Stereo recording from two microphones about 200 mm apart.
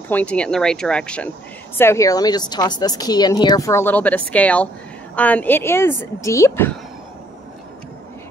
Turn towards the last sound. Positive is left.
turn(degrees=10)  # may be behind; listen again after turning